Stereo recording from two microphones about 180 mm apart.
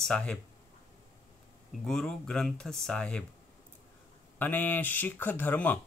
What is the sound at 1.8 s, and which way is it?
Speech, 5° left (ahead or behind).